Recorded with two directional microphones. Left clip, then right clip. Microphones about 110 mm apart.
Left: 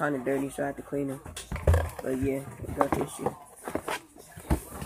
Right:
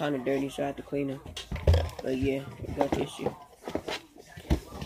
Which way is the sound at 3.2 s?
40° right (ahead or behind).